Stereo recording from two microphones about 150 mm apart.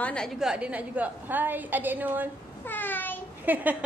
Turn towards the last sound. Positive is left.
turn(degrees=-10)  # may be behind; listen again after turning